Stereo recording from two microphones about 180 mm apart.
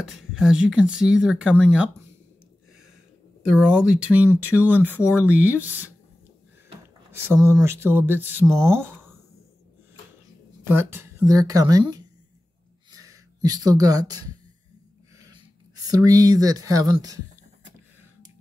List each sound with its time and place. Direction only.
0.0 s speech: 5° right (ahead or behind)
3.5 s speech: 5° right (ahead or behind)
7.1 s speech: 15° right (ahead or behind)
10.6 s speech: 15° right (ahead or behind)
15.1 s a sound: 20° right (ahead or behind)
15.9 s speech: 20° right (ahead or behind)